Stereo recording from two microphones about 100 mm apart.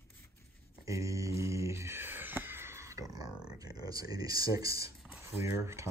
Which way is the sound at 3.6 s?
40° right (ahead or behind).